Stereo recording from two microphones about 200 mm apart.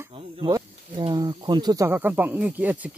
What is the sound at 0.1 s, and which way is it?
Speech, 20° right (ahead or behind).